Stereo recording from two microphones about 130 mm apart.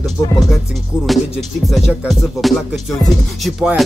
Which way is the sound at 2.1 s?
Centre (ahead or behind).